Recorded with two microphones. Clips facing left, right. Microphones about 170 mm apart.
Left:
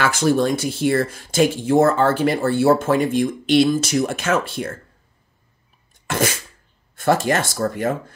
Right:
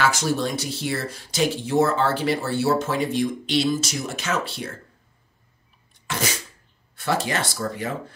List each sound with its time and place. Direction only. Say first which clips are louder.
0.0 s speech: left 5 dB; 55° left (ahead or behind)
6.0 s sneeze: left 6 dB; 50° left (ahead or behind)
7.0 s speech: left 6 dB; 50° left (ahead or behind)